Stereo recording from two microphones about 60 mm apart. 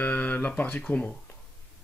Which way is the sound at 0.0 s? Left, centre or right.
Left.